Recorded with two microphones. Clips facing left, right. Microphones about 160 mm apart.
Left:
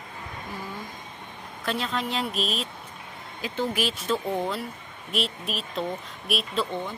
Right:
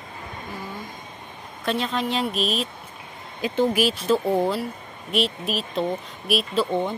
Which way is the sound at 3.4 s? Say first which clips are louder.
Right 7 dB; 20° right (ahead or behind).